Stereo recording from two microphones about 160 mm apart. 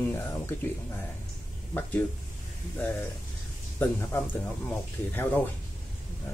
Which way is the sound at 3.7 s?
15° left (ahead or behind).